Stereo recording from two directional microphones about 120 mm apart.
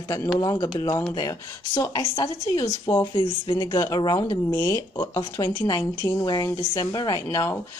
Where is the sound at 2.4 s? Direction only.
25° left (ahead or behind).